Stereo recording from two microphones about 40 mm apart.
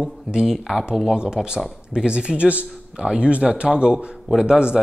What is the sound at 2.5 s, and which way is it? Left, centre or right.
A man's voice, right.